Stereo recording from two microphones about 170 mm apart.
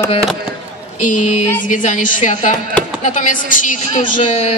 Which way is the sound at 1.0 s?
45° left (ahead or behind).